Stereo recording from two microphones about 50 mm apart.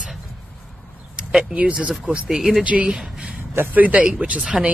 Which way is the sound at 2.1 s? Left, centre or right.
Centre.